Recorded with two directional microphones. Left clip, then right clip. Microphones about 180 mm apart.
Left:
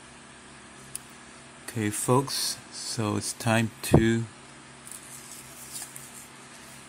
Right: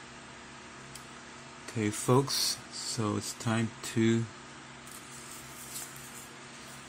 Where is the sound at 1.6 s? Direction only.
25° left (ahead or behind).